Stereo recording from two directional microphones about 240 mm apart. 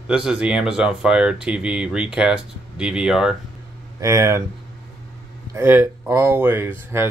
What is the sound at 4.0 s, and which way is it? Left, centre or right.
Speech, centre.